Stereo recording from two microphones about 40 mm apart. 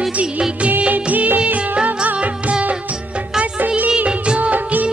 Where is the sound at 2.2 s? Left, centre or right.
Right.